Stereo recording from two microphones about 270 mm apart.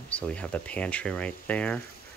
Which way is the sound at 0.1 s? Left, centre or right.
Centre.